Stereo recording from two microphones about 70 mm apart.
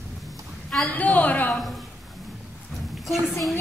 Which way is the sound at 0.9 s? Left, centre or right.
Left.